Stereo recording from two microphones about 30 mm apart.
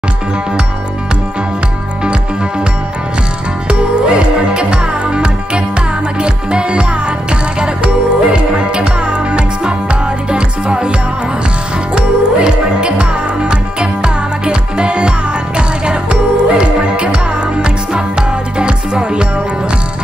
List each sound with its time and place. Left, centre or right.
3.6 s music: right
11.9 s music: right